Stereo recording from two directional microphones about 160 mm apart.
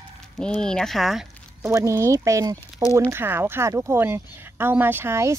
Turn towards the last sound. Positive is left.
turn(degrees=-15)  # may be behind; listen again after turning